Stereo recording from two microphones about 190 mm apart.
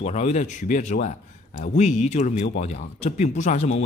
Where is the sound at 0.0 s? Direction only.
35° left (ahead or behind).